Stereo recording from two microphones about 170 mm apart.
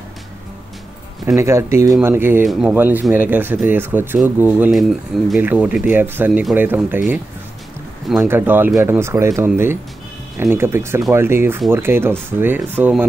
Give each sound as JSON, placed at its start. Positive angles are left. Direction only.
{"t": 1.2, "sound": "speech", "side_deg": -15}
{"t": 8.3, "sound": "speech", "side_deg": -10}